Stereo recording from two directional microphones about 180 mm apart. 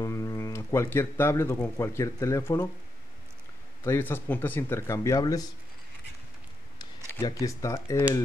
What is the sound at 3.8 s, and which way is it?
Speech, 10° left (ahead or behind).